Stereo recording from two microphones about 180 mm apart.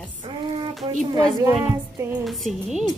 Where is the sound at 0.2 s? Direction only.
25° right (ahead or behind).